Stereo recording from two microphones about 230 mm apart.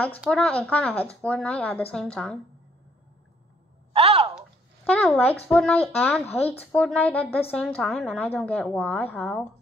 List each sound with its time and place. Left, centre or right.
0.2 s a woman's voice: centre
3.9 s a sound: right
4.8 s a woman's voice: centre